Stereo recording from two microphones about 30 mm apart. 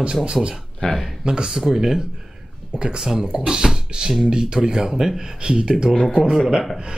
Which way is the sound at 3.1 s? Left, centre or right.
Centre.